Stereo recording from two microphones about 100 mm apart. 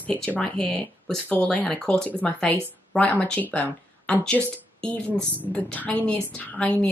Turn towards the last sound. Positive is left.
turn(degrees=10)  # may be behind; listen again after turning